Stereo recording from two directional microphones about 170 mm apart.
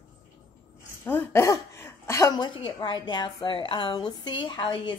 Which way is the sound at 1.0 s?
10° left (ahead or behind).